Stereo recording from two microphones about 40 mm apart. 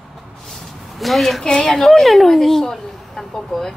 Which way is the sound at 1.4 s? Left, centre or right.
Centre.